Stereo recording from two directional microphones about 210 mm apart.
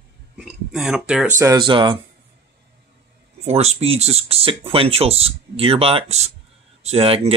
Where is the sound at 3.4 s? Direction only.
30° right (ahead or behind).